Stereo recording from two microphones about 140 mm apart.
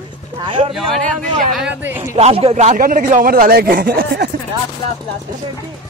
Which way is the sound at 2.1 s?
45° right (ahead or behind).